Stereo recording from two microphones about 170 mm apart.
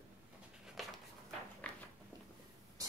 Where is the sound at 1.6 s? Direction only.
5° left (ahead or behind).